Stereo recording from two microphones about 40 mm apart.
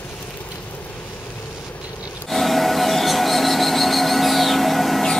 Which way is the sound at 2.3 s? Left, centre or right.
Centre.